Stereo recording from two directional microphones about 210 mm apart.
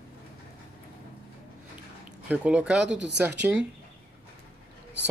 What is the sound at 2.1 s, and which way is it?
Speech, 5° right (ahead or behind).